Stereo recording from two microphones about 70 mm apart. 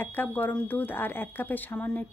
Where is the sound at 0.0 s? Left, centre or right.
Left.